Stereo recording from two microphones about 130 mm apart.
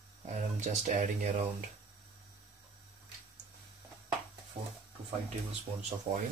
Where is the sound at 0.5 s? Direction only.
80° right.